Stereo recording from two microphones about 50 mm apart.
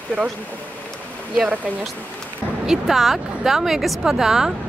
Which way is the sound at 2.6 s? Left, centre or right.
Centre.